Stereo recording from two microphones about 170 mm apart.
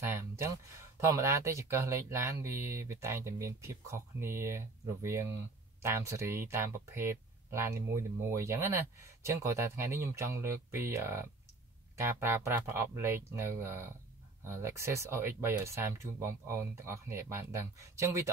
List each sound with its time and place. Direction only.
0.0 s speech: 15° right (ahead or behind)